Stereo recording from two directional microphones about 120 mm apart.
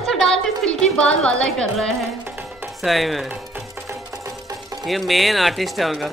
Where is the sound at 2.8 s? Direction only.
Centre (ahead or behind).